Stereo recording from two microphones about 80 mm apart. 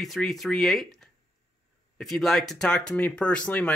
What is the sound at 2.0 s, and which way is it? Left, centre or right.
Speech, centre.